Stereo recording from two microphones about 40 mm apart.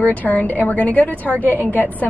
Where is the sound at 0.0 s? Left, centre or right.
Left.